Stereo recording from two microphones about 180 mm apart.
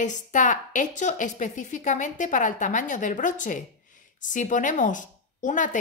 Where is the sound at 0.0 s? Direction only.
45° left (ahead or behind).